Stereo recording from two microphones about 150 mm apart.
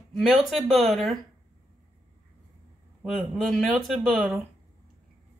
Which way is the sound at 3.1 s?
Centre (ahead or behind).